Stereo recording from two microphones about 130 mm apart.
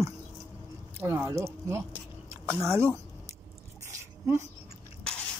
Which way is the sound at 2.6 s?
20° right (ahead or behind).